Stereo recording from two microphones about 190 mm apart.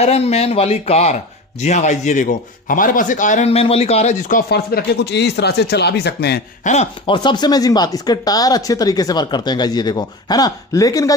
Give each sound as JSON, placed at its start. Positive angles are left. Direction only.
{"t": 0.0, "sound": "a man's voice", "side_deg": 35}
{"t": 4.5, "sound": "speech", "side_deg": 55}
{"t": 6.6, "sound": "a man's voice", "side_deg": 35}
{"t": 7.2, "sound": "speech", "side_deg": 20}